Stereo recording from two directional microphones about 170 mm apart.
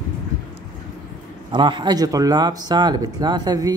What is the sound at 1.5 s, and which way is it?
Speech, 30° right (ahead or behind).